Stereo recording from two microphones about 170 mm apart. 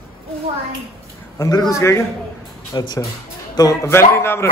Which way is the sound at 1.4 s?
20° left (ahead or behind).